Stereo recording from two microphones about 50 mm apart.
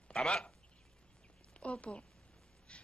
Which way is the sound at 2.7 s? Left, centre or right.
Left.